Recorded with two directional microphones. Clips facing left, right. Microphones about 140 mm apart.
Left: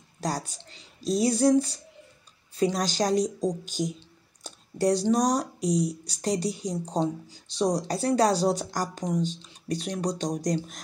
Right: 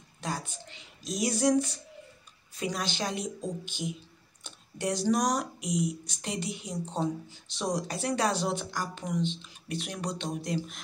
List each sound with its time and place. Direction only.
0.2 s speech: 40° left (ahead or behind)
4.4 s a sound: 35° left (ahead or behind)
5.0 s speech: 30° left (ahead or behind)